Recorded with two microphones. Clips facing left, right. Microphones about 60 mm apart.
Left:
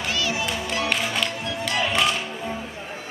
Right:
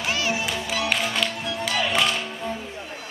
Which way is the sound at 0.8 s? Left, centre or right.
Centre.